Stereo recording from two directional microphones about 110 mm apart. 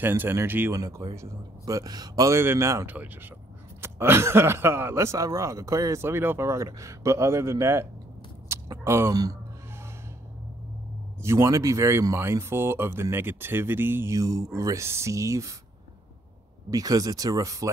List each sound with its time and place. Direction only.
0.0 s speech: 20° right (ahead or behind)
0.7 s speech: 35° right (ahead or behind)
8.5 s a sound: 25° right (ahead or behind)
11.2 s speech: 25° right (ahead or behind)
14.1 s speech: 30° right (ahead or behind)
16.7 s speech: 35° right (ahead or behind)